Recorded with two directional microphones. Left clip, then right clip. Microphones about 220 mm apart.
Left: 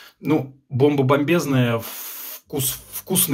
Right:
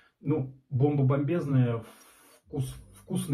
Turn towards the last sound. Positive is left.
turn(degrees=45)  # may be behind; listen again after turning